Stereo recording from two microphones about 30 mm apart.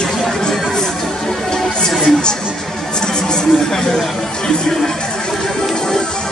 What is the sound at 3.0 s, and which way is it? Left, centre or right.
Music, left.